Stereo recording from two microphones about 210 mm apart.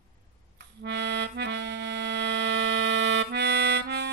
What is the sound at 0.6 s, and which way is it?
Accordion, 55° right (ahead or behind).